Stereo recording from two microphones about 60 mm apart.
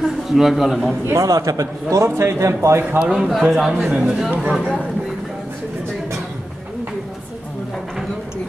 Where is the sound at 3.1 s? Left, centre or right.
Centre.